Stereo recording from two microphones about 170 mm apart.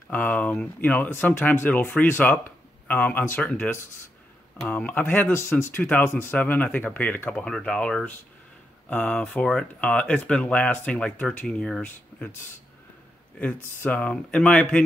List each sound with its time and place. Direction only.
0.1 s speech: 10° left (ahead or behind)
13.8 s speech: 5° left (ahead or behind)